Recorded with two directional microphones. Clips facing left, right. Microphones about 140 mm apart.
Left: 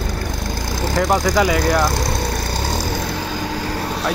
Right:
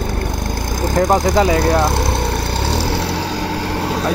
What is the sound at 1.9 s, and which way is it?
Vehicle, 55° right (ahead or behind).